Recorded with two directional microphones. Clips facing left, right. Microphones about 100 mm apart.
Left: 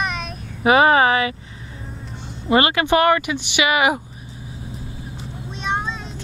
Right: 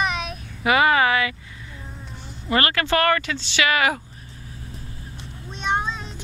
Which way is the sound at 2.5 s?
20° left (ahead or behind).